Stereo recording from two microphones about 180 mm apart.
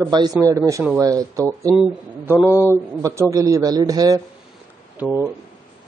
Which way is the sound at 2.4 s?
15° left (ahead or behind).